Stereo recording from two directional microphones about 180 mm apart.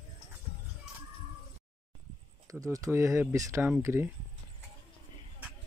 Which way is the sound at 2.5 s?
20° right (ahead or behind).